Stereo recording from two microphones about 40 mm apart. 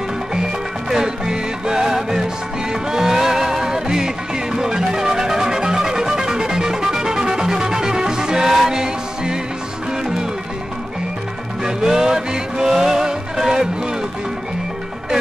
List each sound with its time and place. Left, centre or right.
0.3 s music: centre
11.6 s music: centre